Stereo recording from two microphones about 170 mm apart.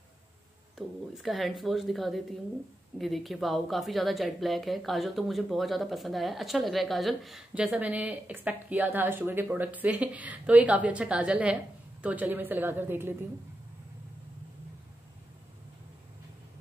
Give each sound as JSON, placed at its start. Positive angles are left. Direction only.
{"t": 0.7, "sound": "a woman's voice", "side_deg": 0}